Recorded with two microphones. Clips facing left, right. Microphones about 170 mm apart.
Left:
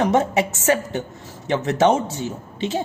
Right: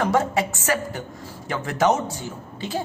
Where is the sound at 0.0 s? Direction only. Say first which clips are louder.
Left 3 dB; 20° left (ahead or behind).